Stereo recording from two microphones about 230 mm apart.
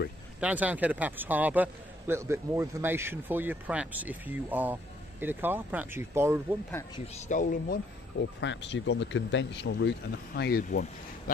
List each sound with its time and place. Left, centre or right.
0.4 s speech: centre
7.2 s speech: left